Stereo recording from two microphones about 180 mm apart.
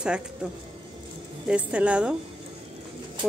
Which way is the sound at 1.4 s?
5° right (ahead or behind).